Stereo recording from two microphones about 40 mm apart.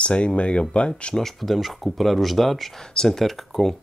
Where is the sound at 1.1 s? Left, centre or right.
Centre.